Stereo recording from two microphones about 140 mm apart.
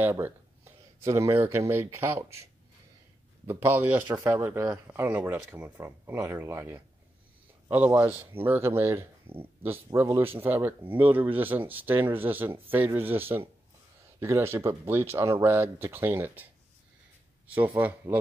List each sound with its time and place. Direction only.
0.0 s speech: 15° right (ahead or behind)
3.4 s speech: 15° right (ahead or behind)
8.0 s speech: 15° right (ahead or behind)
17.5 s speech: 15° right (ahead or behind)